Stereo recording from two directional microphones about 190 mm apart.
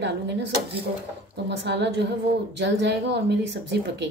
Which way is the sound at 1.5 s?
65° right (ahead or behind).